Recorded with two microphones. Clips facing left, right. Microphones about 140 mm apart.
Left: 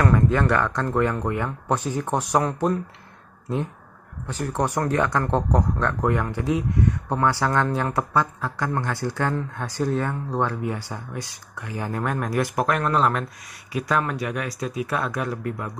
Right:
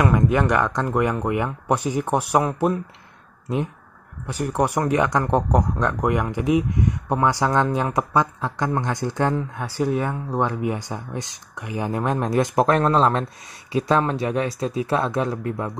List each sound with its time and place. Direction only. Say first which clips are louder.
0.0 s speech: right 1 dB; 15° right (ahead or behind)
4.3 s speech: right 3 dB; 15° right (ahead or behind)